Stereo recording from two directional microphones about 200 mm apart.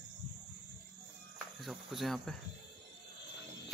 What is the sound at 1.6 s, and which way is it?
Speech, centre (ahead or behind).